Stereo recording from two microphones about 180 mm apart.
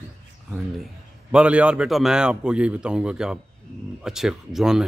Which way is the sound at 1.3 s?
5° right (ahead or behind).